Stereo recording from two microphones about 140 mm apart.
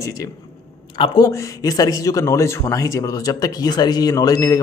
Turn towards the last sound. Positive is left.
turn(degrees=25)  # may be behind; listen again after turning